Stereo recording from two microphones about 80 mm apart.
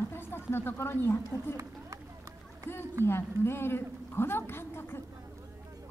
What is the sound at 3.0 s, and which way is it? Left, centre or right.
A woman's voice, left.